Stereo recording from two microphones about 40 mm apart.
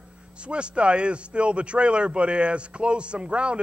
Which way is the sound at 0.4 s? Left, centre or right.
Right.